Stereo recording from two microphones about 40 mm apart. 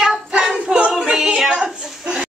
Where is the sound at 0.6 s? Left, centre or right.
Right.